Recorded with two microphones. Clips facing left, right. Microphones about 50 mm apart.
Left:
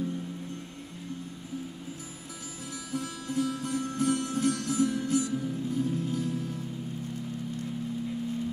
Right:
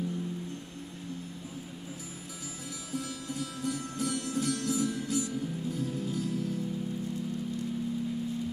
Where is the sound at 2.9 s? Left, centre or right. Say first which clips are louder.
Left 3 dB; left.